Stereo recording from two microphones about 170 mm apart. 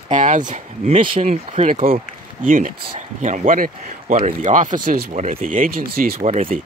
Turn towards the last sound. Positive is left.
turn(degrees=-40)  # may be behind; listen again after turning